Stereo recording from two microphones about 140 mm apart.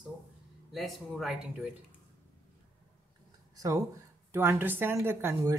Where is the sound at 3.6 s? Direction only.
25° right (ahead or behind).